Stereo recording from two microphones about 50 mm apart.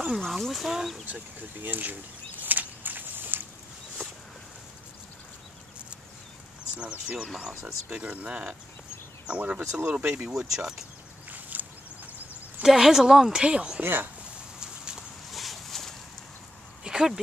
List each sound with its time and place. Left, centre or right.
0.0 s chicken: centre
1.6 s speech: right
2.4 s walk: right
6.8 s speech: right
10.3 s speech: centre
11.2 s a sound: right
12.6 s speech: centre
13.8 s speech: right
14.6 s a sound: centre
15.3 s boat: centre
16.8 s a sound: centre